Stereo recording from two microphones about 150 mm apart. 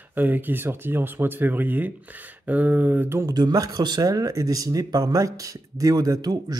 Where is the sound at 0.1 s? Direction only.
10° right (ahead or behind).